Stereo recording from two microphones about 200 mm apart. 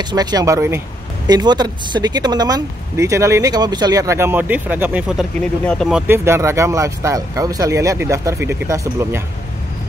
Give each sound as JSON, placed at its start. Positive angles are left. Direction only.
{"t": 0.0, "sound": "speech", "side_deg": -20}